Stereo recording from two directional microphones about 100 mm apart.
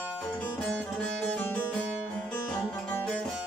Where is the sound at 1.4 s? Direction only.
20° left (ahead or behind).